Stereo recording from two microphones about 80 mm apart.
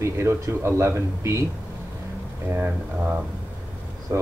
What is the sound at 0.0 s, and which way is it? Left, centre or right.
Speech, right.